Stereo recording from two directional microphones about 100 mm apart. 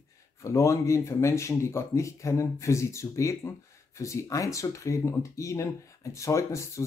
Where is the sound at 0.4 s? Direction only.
30° left (ahead or behind).